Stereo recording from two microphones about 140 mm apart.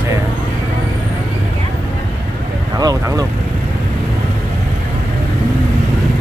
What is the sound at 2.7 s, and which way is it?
Vehicle, 25° right (ahead or behind).